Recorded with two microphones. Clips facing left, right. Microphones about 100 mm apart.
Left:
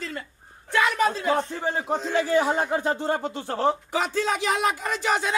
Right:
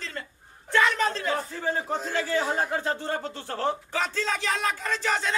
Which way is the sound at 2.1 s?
20° left (ahead or behind).